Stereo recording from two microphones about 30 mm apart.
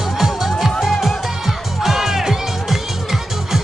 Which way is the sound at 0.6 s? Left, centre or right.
Centre.